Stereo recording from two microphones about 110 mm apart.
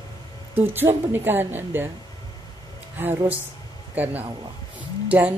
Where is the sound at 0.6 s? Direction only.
20° right (ahead or behind).